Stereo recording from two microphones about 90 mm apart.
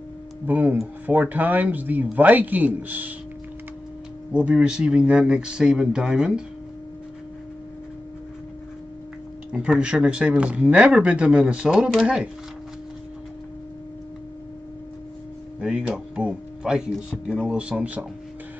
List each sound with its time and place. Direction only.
0.5 s speech: 20° right (ahead or behind)
4.3 s speech: 10° right (ahead or behind)
9.5 s speech: 10° right (ahead or behind)
15.6 s speech: 15° right (ahead or behind)